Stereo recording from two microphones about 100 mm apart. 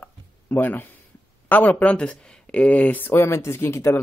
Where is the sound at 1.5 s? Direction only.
15° left (ahead or behind).